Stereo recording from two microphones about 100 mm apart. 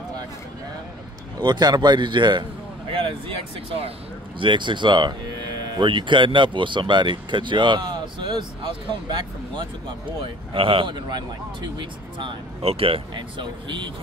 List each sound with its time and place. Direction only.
1.4 s speech: 45° right (ahead or behind); by 3.9 s 65° right (ahead or behind)
4.4 s speech: 55° right (ahead or behind)
10.2 s speech: 60° right (ahead or behind)
12.6 s speech: 75° right (ahead or behind); by 13.9 s 55° right (ahead or behind)